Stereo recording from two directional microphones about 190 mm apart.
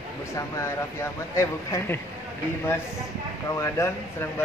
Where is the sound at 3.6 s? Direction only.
15° left (ahead or behind).